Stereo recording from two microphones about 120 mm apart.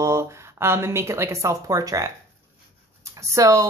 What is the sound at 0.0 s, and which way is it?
Speech, 25° right (ahead or behind).